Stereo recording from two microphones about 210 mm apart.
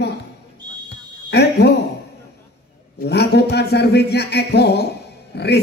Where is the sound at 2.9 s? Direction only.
50° left (ahead or behind).